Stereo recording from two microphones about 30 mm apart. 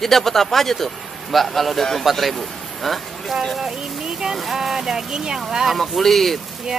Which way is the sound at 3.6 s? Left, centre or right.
Centre.